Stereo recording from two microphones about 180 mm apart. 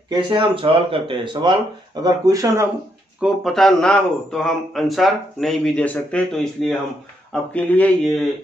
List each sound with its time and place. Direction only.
0.1 s speech: 25° right (ahead or behind)
3.2 s a man's voice: centre (ahead or behind)